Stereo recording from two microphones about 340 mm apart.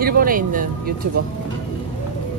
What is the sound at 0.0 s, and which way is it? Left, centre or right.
Speech, right.